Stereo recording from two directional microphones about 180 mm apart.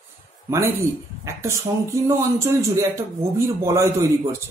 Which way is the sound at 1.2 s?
15° right (ahead or behind).